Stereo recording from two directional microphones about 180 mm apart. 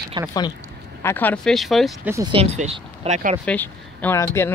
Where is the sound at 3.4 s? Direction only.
10° left (ahead or behind).